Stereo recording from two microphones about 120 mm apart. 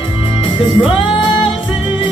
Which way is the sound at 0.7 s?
45° left (ahead or behind).